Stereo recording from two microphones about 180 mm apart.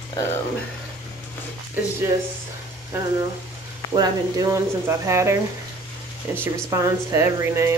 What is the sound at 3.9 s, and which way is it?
Speech, 20° right (ahead or behind).